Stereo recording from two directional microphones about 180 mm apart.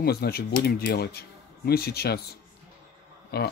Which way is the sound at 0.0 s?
60° left (ahead or behind).